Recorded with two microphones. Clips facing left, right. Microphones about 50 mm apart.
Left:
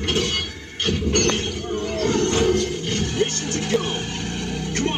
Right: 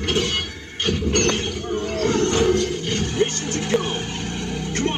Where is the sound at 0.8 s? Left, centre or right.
Right.